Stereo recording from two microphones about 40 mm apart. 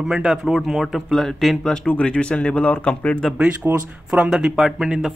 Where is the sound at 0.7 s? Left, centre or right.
Centre.